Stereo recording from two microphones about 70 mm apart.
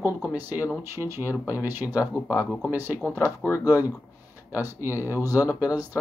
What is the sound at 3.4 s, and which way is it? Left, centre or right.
Speech, left.